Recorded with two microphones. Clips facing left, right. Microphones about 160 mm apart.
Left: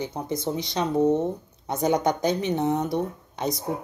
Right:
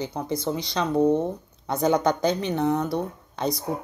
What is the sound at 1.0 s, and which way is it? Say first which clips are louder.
Speech: even; 15° right (ahead or behind).